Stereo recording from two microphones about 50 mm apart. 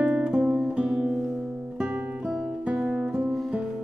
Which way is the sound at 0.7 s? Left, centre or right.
Centre.